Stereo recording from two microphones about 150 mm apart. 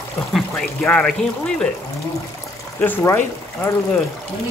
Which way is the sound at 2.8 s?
10° left (ahead or behind).